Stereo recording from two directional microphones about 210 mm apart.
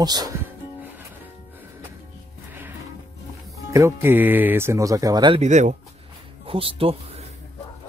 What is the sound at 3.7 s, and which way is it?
Speech, 10° right (ahead or behind).